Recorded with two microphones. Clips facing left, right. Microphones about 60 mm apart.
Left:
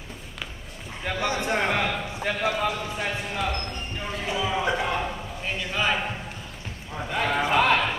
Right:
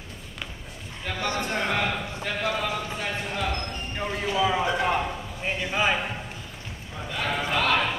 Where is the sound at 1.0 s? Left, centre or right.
Centre.